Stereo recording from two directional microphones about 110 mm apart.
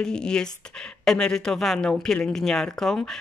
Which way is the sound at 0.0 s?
5° left (ahead or behind).